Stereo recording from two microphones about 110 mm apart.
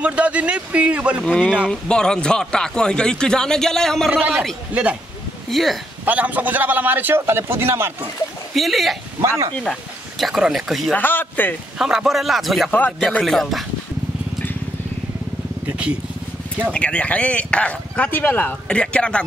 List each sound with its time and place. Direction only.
0.0 s a man's voice: 10° right (ahead or behind)
1.2 s speech: 10° left (ahead or behind)
4.1 s a man's voice: 10° right (ahead or behind)
5.5 s speech: centre (ahead or behind)
6.0 s a man's voice: 15° right (ahead or behind)
8.5 s speech: centre (ahead or behind)
9.2 s speech: 25° right (ahead or behind)
9.6 s speech: centre (ahead or behind)
11.0 s speech: 15° left (ahead or behind)
11.8 s speech: 5° right (ahead or behind)
15.6 s vehicle: 10° right (ahead or behind)
16.7 s speech: 10° left (ahead or behind)